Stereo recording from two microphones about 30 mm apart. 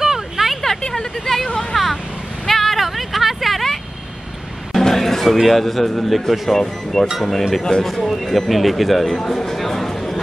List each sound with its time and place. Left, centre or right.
0.0 s vehicle: centre
0.9 s speech: centre
1.7 s vehicle: centre
2.4 s a sound: centre
4.7 s speech: centre
6.5 s speech: centre